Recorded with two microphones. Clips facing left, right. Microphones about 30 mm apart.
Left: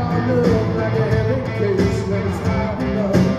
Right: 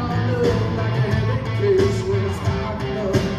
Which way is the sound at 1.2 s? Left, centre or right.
Centre.